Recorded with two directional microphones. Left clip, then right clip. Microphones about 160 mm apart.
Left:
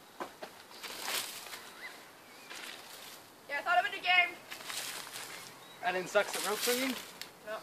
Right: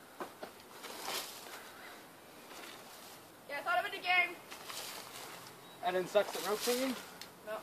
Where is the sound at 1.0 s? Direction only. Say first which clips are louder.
Left 4 dB; centre (ahead or behind).